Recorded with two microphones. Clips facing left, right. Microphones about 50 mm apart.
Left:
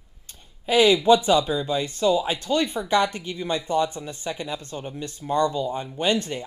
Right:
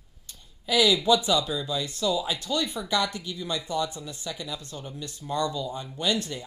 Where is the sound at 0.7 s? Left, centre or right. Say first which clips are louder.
Left 5 dB; left.